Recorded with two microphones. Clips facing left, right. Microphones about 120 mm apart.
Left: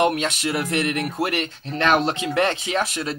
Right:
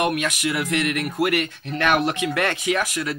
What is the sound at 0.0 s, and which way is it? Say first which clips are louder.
Speech: left 2 dB; 30° left (ahead or behind).